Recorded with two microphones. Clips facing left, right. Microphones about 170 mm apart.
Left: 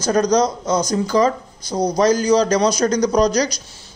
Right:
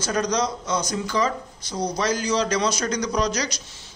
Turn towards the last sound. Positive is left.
turn(degrees=40)  # may be behind; listen again after turning